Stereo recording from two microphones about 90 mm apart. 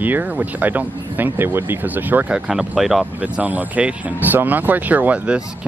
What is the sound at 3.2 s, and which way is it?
Speech, 15° right (ahead or behind).